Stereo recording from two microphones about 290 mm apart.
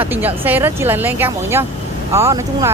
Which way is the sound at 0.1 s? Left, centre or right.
Centre.